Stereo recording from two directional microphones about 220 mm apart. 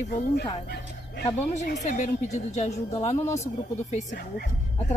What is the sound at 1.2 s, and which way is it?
Speech, 10° left (ahead or behind).